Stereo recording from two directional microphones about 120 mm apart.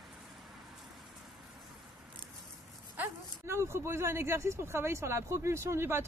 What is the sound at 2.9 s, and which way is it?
Speech, 20° right (ahead or behind).